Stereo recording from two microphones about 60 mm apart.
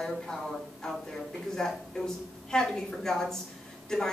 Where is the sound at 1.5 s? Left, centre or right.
Centre.